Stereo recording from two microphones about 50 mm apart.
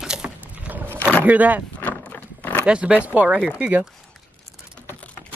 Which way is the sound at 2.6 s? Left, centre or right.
Right.